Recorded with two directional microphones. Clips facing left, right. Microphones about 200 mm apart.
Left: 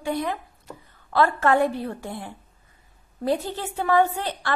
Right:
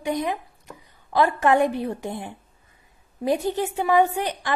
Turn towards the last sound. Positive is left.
turn(degrees=-15)  # may be behind; listen again after turning